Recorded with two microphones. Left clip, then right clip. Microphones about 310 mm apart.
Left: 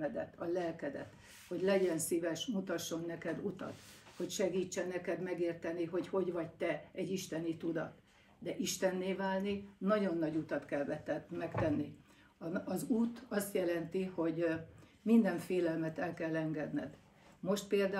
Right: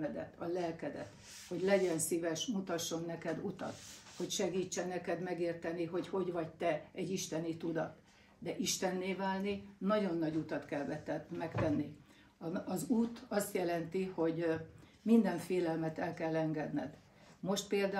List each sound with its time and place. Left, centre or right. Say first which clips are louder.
0.4 s speech: even; centre
2.0 s speech: even; centre